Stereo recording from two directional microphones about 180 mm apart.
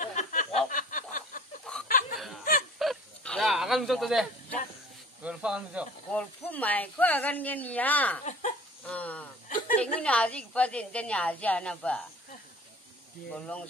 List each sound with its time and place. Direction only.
0.0 s a sound: 45° left (ahead or behind)
1.9 s snicker: 50° left (ahead or behind)
2.1 s snicker: centre (ahead or behind)
2.8 s a sound: centre (ahead or behind)
5.2 s speech: 5° right (ahead or behind)
6.1 s a woman's voice: 10° left (ahead or behind)
8.3 s a sound: 45° left (ahead or behind)
8.8 s a woman's voice: 5° left (ahead or behind)
13.3 s a woman's voice: 5° left (ahead or behind)